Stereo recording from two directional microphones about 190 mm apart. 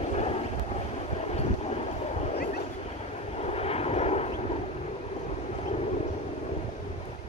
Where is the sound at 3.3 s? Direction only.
35° left (ahead or behind).